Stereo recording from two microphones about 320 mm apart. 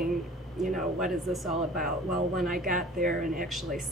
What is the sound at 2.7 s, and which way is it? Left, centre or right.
Speech, right.